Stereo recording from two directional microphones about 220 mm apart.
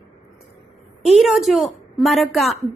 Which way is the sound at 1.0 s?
Centre (ahead or behind).